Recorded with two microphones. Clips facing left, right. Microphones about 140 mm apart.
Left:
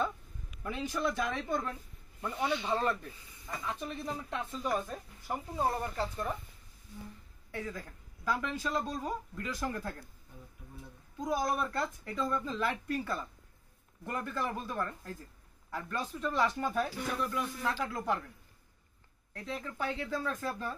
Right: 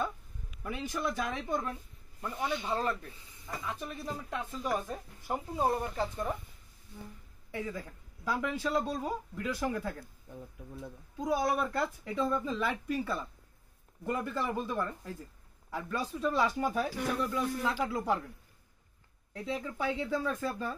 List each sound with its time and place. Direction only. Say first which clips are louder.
0.9 s speech: left 1 dB; 10° right (ahead or behind)
7.5 s speech: right 2 dB; 10° right (ahead or behind)
11.1 s speech: right 2 dB; 5° right (ahead or behind)
19.3 s speech: right 4 dB; 10° right (ahead or behind)